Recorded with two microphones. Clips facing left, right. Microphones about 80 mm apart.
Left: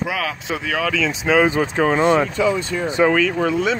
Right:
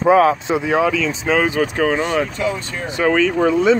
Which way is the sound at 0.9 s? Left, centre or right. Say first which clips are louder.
Even; centre.